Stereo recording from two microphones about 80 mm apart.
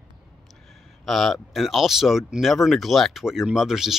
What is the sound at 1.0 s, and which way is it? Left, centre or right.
Speech, centre.